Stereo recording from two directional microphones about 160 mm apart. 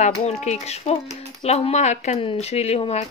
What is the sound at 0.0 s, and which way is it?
Speech, 45° left (ahead or behind).